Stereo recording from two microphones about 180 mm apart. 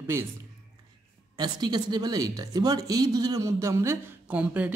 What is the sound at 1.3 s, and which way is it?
Speech, 25° right (ahead or behind).